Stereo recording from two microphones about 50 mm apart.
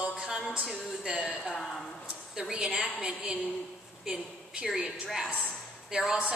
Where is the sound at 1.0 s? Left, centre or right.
Right.